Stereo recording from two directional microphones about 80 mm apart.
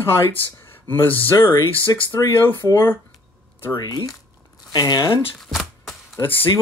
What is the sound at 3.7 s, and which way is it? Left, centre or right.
Speech, left.